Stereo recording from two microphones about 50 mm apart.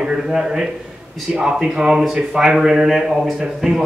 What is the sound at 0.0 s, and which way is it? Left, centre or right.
A man's voice, centre.